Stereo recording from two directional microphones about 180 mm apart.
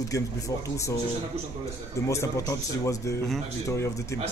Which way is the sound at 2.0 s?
15° left (ahead or behind).